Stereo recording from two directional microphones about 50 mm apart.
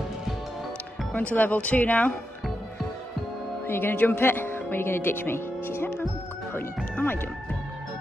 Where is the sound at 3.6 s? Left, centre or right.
Left.